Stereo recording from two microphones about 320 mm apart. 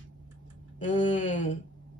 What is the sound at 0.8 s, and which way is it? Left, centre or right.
Speech, left.